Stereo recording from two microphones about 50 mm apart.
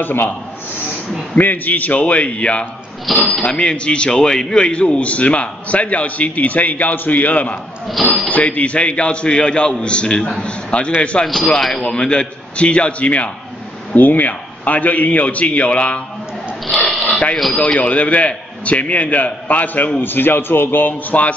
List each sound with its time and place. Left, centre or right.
0.0 s speech: left
1.4 s a man's voice: left
3.1 s speech: centre
3.4 s a man's voice: left
11.5 s a man's voice: centre
13.9 s a man's voice: left
17.0 s a sound: left
17.7 s a man's voice: left